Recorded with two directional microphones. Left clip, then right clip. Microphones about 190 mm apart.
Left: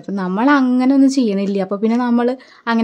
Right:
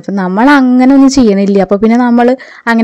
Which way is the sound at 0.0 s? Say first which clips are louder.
Right 8 dB; 35° right (ahead or behind).